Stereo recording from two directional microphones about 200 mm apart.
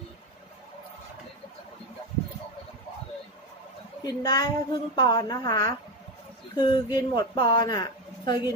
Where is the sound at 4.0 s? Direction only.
20° left (ahead or behind).